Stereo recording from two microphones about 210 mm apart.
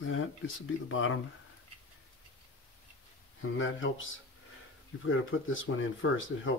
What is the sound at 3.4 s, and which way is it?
Speech, 70° left (ahead or behind).